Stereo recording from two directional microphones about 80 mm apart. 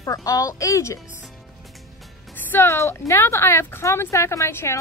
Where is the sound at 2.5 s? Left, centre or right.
Left.